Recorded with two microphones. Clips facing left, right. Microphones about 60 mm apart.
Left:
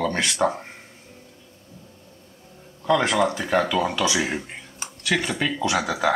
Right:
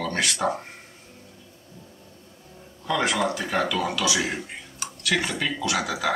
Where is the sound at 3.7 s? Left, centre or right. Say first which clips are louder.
Left 3 dB; left.